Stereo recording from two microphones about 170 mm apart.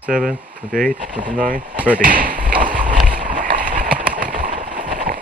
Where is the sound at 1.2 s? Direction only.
50° right (ahead or behind).